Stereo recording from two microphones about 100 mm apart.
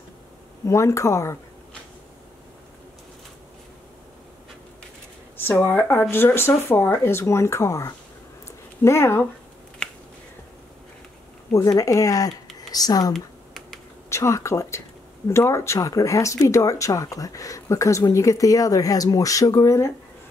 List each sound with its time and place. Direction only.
0.7 s speech: 30° left (ahead or behind)
5.4 s speech: 20° left (ahead or behind)
9.8 s finger snapping: 10° left (ahead or behind)
11.5 s speech: 35° left (ahead or behind)
13.1 s computer keyboard: 5° left (ahead or behind)
14.0 s speech: 30° left (ahead or behind)